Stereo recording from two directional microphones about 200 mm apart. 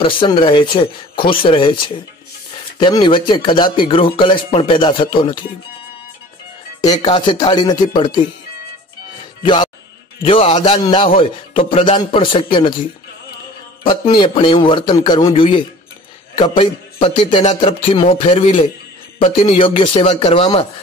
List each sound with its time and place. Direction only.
0.0 s a man's voice: 25° left (ahead or behind)
6.8 s a man's voice: 25° left (ahead or behind)
9.4 s a man's voice: 25° left (ahead or behind)
13.8 s a man's voice: 25° left (ahead or behind)